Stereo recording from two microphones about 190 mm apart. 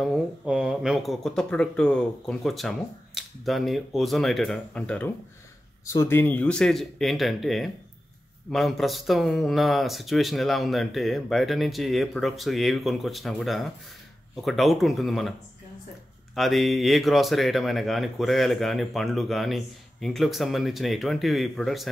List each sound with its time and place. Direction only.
0.0 s speech: centre (ahead or behind)
16.3 s speech: centre (ahead or behind)